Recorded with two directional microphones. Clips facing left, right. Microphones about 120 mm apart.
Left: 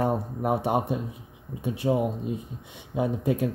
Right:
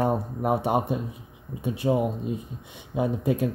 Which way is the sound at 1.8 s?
10° right (ahead or behind).